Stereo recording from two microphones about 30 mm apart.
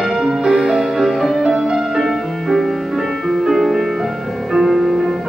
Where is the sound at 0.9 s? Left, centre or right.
Centre.